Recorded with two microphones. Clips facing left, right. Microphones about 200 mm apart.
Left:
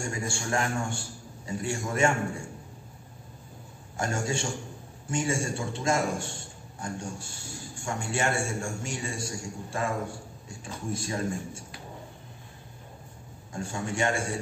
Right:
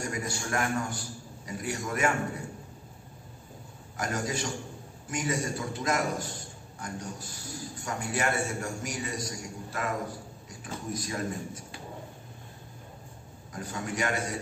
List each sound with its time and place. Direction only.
0.0 s a man's voice: 25° left (ahead or behind)
3.9 s a man's voice: 25° left (ahead or behind)
13.5 s a man's voice: 25° left (ahead or behind)